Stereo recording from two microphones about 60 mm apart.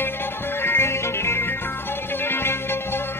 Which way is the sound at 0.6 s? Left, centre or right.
Left.